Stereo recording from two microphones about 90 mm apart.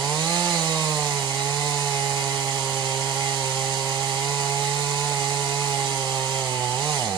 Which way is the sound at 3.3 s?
50° right (ahead or behind).